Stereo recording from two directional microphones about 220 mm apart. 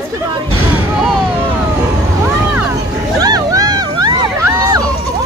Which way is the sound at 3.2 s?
15° right (ahead or behind).